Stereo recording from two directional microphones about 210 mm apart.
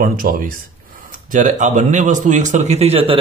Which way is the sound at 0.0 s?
40° right (ahead or behind).